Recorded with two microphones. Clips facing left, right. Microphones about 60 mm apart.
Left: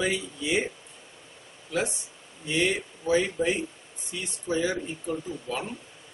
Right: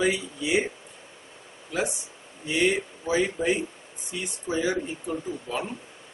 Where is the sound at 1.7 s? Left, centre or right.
Centre.